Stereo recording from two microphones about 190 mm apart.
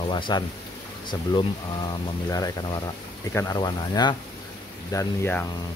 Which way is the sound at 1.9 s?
20° left (ahead or behind).